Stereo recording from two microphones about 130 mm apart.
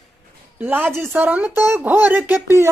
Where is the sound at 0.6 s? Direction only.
15° right (ahead or behind).